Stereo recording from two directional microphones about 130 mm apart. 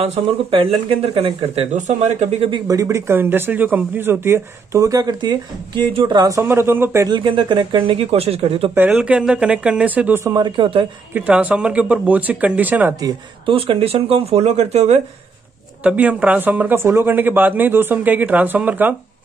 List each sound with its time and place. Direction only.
0.0 s speech: 45° right (ahead or behind)
1.8 s speech: 65° right (ahead or behind)
2.5 s speech: 25° right (ahead or behind)
6.4 s speech: 15° right (ahead or behind)
7.1 s speech: 35° right (ahead or behind)
8.7 s speech: 10° right (ahead or behind)
10.2 s speech: 35° right (ahead or behind)
11.1 s speech: 10° right (ahead or behind)
13.5 s speech: 45° right (ahead or behind)
15.8 s speech: 10° right (ahead or behind)